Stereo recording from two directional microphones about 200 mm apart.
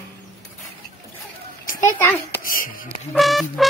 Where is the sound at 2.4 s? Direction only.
45° left (ahead or behind).